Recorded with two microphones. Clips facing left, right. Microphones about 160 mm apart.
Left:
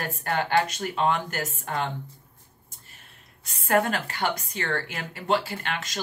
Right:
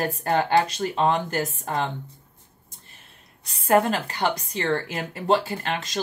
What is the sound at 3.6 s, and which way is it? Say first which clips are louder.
Speech: right 3 dB; 30° right (ahead or behind).